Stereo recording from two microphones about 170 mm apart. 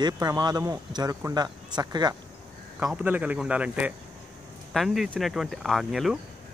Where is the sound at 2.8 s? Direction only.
5° right (ahead or behind).